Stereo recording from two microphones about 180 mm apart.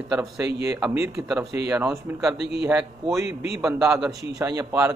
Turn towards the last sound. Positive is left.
turn(degrees=-15)  # may be behind; listen again after turning